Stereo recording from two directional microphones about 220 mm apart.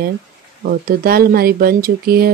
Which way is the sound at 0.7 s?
40° right (ahead or behind).